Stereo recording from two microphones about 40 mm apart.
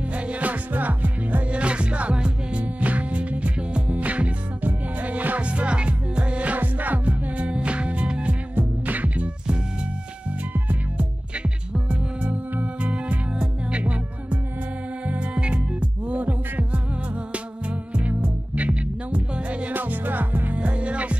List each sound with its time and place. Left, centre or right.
0.1 s music: right
1.5 s music: right
2.6 s music: right
5.4 s music: right
6.6 s music: right
8.5 s music: right
11.0 s music: right
19.7 s music: right
20.5 s music: right